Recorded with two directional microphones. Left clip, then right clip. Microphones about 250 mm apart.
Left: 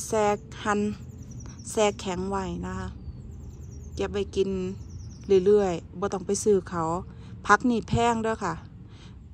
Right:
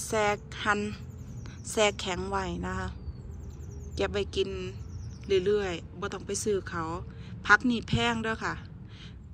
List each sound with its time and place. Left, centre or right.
0.0 s a woman's voice: centre
3.9 s a woman's voice: centre